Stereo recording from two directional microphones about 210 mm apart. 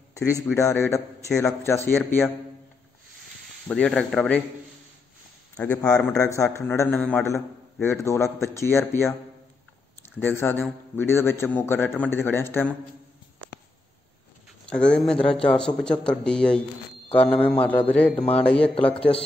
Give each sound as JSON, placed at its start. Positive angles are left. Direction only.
{"t": 0.3, "sound": "a man's voice", "side_deg": 15}
{"t": 3.6, "sound": "speech", "side_deg": 5}
{"t": 5.6, "sound": "a man's voice", "side_deg": 10}
{"t": 14.7, "sound": "a man's voice", "side_deg": 5}